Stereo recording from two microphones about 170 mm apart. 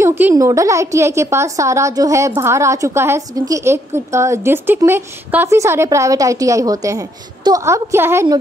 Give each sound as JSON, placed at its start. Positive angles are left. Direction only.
{"t": 0.0, "sound": "a woman's voice", "side_deg": -15}